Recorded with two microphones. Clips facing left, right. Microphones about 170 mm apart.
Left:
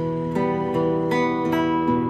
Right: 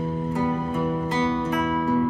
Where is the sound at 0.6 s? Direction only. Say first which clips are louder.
Left 5 dB; 35° left (ahead or behind).